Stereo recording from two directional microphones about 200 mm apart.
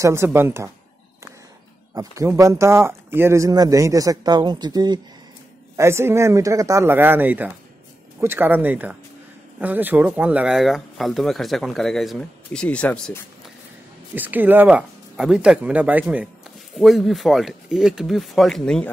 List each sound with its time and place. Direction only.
0.0 s speech: 15° right (ahead or behind)
2.0 s speech: 15° right (ahead or behind); by 13.2 s 5° left (ahead or behind)
14.1 s speech: 10° right (ahead or behind)